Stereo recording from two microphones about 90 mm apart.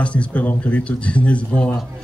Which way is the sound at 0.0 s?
15° left (ahead or behind).